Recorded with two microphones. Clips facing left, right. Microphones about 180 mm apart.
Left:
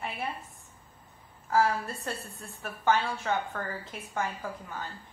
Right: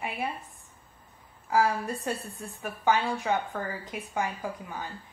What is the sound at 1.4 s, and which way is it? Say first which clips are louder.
A woman's voice: right 1 dB; 15° right (ahead or behind).